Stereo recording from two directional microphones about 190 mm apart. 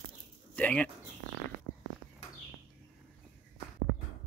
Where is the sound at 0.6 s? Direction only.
5° left (ahead or behind).